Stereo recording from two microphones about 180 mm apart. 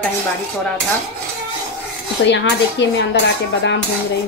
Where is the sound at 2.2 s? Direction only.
75° left (ahead or behind).